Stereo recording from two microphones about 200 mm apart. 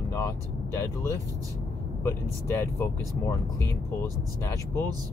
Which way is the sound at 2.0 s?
15° left (ahead or behind).